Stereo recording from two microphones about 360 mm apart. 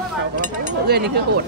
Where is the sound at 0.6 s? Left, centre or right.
Right.